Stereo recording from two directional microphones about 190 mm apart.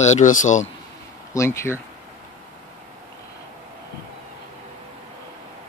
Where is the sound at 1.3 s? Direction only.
15° left (ahead or behind).